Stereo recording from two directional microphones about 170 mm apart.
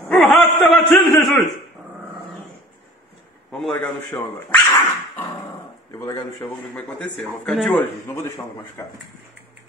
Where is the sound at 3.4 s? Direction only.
Centre (ahead or behind).